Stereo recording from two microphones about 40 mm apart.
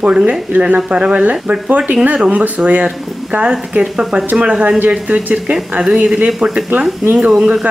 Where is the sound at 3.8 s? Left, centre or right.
Centre.